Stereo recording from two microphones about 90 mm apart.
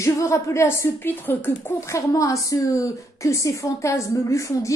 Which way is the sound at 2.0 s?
40° left (ahead or behind).